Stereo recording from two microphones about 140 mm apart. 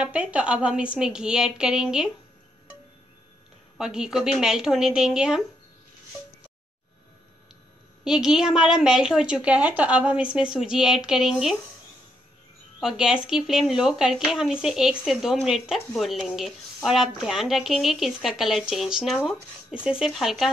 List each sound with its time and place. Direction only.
0.0 s speech: 10° right (ahead or behind)
3.7 s speech: 5° right (ahead or behind)
8.0 s speech: 5° right (ahead or behind)
12.8 s speech: 5° right (ahead or behind)